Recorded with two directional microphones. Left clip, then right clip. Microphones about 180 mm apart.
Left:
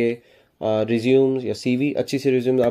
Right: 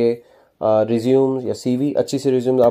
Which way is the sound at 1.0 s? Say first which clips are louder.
Left 3 dB; 20° right (ahead or behind).